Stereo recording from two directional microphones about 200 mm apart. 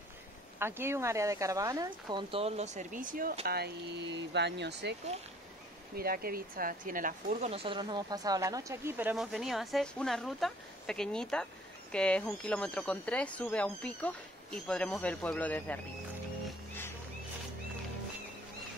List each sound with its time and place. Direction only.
0.6 s speech: 10° right (ahead or behind); by 4.9 s 60° right (ahead or behind)
5.9 s speech: 50° right (ahead or behind)
7.5 s speech: 25° right (ahead or behind); by 15.8 s 10° left (ahead or behind)